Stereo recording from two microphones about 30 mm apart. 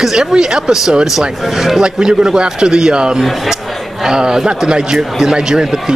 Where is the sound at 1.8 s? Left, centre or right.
Right.